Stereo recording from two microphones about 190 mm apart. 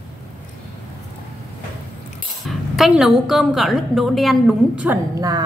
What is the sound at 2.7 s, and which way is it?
A woman's voice, centre (ahead or behind).